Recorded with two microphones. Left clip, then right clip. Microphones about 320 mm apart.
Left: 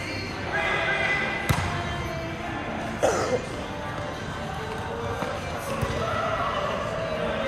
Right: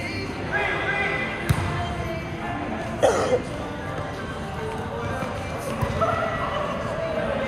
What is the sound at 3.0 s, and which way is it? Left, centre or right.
Music, right.